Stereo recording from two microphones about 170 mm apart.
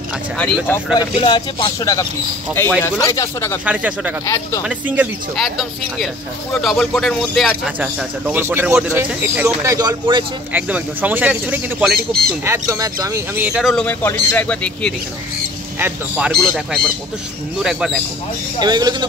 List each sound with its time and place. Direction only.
0.4 s speech: 5° left (ahead or behind)
0.9 s speech: 25° left (ahead or behind)
3.6 s speech: 10° right (ahead or behind)
5.3 s speech: centre (ahead or behind); by 10.2 s 25° right (ahead or behind)
10.5 s speech: 10° right (ahead or behind)
12.4 s speech: 20° right (ahead or behind); by 13.8 s centre (ahead or behind)
13.8 s speech: 10° left (ahead or behind)
16.3 s speech: centre (ahead or behind)
18.6 s speech: 25° right (ahead or behind)